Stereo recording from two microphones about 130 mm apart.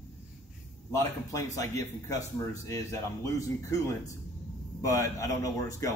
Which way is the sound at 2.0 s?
25° left (ahead or behind).